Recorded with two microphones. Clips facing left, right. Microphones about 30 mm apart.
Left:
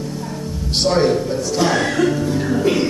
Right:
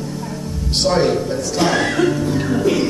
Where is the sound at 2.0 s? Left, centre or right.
Centre.